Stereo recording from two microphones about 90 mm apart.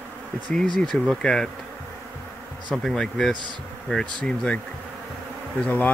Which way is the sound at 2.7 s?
5° left (ahead or behind).